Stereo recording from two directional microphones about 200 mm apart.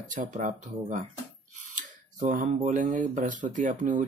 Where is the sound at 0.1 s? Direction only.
40° right (ahead or behind).